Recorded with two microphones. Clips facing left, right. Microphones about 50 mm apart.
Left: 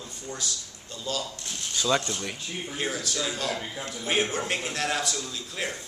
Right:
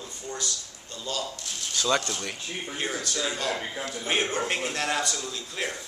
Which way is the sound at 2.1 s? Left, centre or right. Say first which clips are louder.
Even; centre.